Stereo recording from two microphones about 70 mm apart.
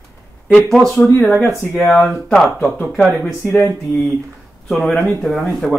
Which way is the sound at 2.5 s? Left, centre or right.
Left.